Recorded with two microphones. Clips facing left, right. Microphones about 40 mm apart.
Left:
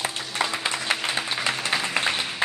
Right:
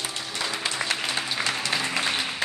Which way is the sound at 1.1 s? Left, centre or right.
Centre.